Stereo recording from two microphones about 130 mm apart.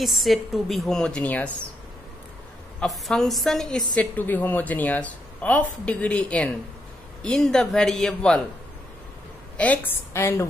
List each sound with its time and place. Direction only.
0.0 s a woman's voice: centre (ahead or behind)
2.8 s a woman's voice: 5° left (ahead or behind)
9.6 s a woman's voice: 15° left (ahead or behind)